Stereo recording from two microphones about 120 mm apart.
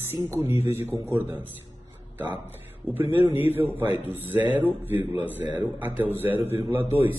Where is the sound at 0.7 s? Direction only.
20° right (ahead or behind).